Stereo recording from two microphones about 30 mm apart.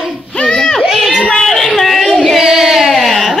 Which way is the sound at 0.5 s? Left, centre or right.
Centre.